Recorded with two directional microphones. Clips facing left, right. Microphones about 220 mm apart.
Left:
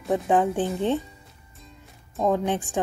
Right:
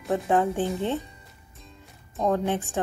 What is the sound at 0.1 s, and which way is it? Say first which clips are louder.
Speech: left 2 dB; 15° left (ahead or behind).